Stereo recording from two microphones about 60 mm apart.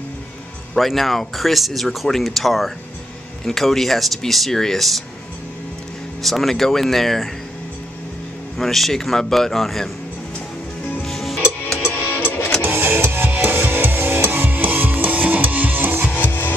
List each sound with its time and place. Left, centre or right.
0.7 s speech: centre
6.2 s speech: centre
8.5 s speech: centre
11.0 s music: centre
12.6 s music: right
16.1 s music: left